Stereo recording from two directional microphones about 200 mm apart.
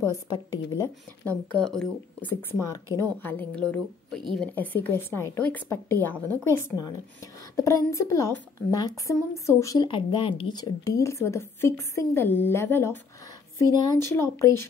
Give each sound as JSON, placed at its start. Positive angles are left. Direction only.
{"t": 0.5, "sound": "a woman's voice", "side_deg": 15}
{"t": 1.6, "sound": "a woman's voice", "side_deg": 5}
{"t": 2.9, "sound": "a woman's voice", "side_deg": -15}
{"t": 3.2, "sound": "a woman's voice", "side_deg": 10}